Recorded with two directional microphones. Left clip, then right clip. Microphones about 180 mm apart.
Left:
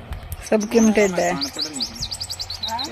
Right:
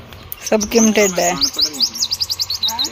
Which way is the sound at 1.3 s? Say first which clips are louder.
Right 9 dB; 40° left (ahead or behind).